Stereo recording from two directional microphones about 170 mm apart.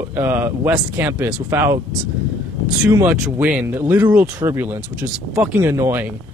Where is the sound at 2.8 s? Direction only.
10° right (ahead or behind).